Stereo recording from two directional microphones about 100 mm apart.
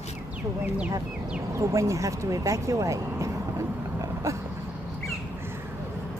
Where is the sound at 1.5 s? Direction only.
30° right (ahead or behind).